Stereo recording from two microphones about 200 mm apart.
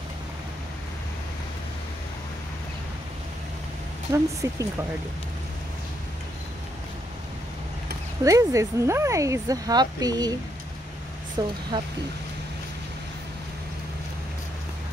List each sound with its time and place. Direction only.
4.1 s speech: 15° right (ahead or behind)
8.2 s speech: 15° right (ahead or behind)
11.4 s speech: 20° right (ahead or behind)